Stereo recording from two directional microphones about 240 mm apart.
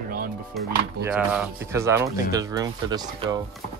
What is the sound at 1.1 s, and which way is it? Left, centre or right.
Speech, centre.